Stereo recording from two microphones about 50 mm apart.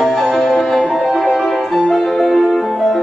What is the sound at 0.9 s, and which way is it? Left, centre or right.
Music, centre.